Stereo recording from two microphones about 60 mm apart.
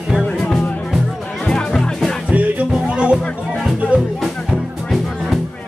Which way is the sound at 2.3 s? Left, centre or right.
Right.